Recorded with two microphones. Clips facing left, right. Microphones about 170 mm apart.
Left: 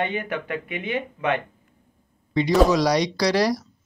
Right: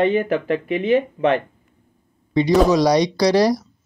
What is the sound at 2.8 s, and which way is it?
Speech, 20° right (ahead or behind).